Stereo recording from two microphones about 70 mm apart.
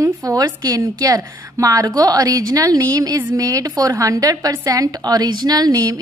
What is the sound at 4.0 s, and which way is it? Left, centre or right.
A woman's voice, right.